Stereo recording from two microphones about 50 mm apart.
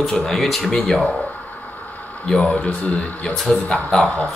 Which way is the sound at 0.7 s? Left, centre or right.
Centre.